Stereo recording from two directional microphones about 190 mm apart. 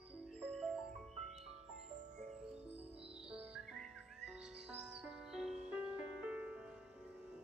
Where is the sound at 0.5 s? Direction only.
5° left (ahead or behind).